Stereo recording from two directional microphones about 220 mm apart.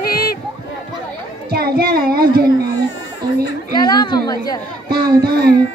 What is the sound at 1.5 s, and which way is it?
Child singing, 45° right (ahead or behind).